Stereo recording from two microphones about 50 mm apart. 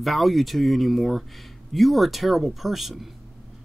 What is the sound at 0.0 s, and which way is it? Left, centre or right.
Speech, centre.